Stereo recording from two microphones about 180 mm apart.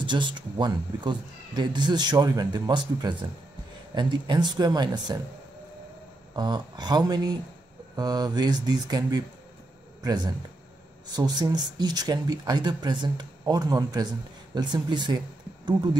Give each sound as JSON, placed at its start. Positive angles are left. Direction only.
{"t": 0.0, "sound": "speech", "side_deg": -25}
{"t": 6.3, "sound": "speech", "side_deg": -25}